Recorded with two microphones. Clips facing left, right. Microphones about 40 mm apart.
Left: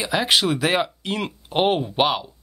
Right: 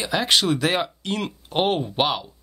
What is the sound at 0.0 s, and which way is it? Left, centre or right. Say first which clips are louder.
Speech: left 1 dB; centre.